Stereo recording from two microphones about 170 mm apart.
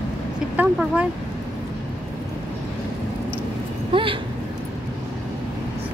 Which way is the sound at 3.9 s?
30° right (ahead or behind).